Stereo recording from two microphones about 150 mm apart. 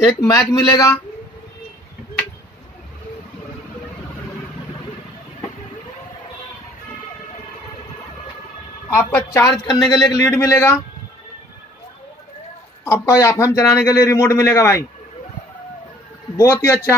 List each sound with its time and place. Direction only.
0.0 s a man's voice: 20° left (ahead or behind)
8.9 s a man's voice: 20° left (ahead or behind)
12.8 s a man's voice: 20° left (ahead or behind)
16.3 s a man's voice: 20° left (ahead or behind)